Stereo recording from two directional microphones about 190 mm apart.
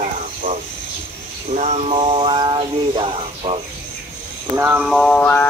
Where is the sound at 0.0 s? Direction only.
40° right (ahead or behind).